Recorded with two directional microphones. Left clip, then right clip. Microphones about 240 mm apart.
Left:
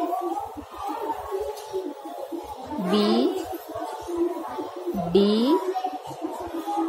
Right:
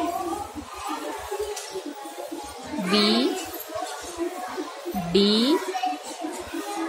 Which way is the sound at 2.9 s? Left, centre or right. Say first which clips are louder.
Right 1 dB; centre.